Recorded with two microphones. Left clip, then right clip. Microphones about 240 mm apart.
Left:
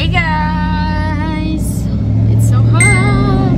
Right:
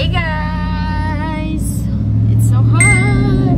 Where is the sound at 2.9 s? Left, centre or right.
Centre.